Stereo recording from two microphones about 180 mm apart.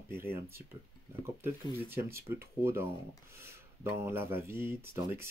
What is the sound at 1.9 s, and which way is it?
Speech, 15° right (ahead or behind).